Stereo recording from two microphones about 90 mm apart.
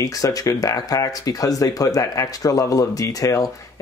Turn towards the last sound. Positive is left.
turn(degrees=40)  # may be behind; listen again after turning